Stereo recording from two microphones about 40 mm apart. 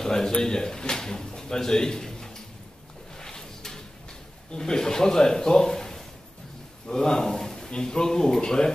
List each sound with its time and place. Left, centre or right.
0.0 s speech: centre
3.2 s a sound: centre
4.5 s speech: centre